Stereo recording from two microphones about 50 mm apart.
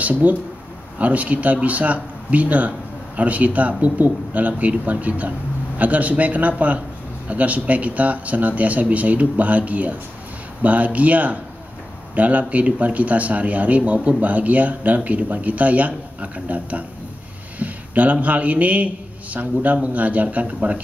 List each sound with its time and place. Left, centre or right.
0.0 s speech: right